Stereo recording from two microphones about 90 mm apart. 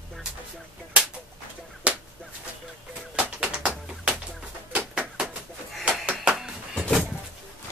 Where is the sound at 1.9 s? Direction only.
15° right (ahead or behind).